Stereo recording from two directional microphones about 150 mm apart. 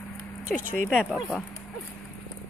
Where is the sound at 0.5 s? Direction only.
65° left (ahead or behind).